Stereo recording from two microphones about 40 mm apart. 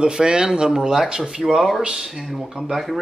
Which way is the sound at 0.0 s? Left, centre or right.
Right.